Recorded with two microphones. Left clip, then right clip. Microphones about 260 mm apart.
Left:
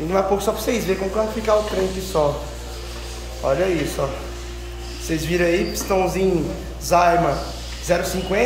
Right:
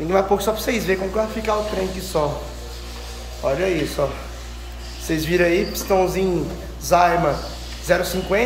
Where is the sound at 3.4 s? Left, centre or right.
Centre.